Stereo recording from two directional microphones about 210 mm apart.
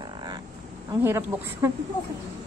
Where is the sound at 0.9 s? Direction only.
10° right (ahead or behind).